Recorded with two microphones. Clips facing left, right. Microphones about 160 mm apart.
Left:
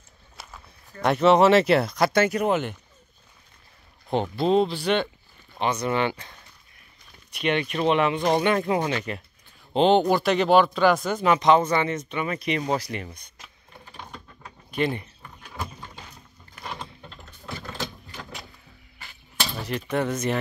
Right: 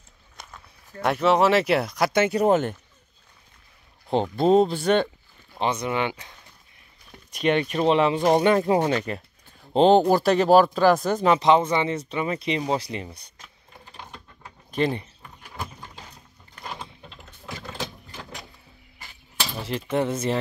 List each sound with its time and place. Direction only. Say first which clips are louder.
0.4 s walk: even; 5° left (ahead or behind)
1.0 s speech: left 2 dB; 5° right (ahead or behind)
2.4 s speech: right 4 dB; 45° right (ahead or behind)
4.4 s speech: right 3 dB; 45° right (ahead or behind)
5.6 s speech: even; 25° right (ahead or behind)
5.9 s speech: left 1 dB; 10° right (ahead or behind)
7.3 s speech: right 3 dB; 40° right (ahead or behind)
13.9 s mechanisms: left 1 dB; 5° right (ahead or behind)
14.7 s speech: right 1 dB; 35° right (ahead or behind)
15.4 s a sound: left 1 dB; 10° right (ahead or behind)
19.6 s speech: right 2 dB; 25° right (ahead or behind)